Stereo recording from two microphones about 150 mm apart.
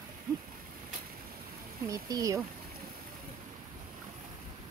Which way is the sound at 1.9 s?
25° right (ahead or behind).